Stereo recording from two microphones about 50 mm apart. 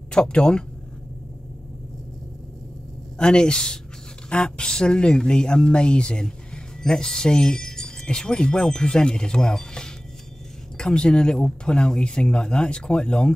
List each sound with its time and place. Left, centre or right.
0.1 s speech: centre
3.2 s speech: centre